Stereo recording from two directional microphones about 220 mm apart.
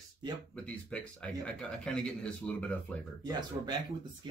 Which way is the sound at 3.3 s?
20° right (ahead or behind).